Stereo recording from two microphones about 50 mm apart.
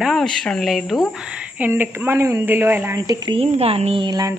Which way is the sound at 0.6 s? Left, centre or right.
Centre.